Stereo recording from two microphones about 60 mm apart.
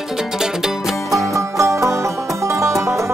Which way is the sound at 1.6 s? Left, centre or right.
Right.